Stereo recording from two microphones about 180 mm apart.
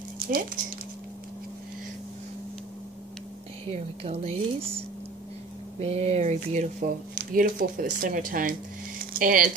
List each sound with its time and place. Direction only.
3.7 s a woman's voice: 35° right (ahead or behind)
5.8 s speech: 35° right (ahead or behind)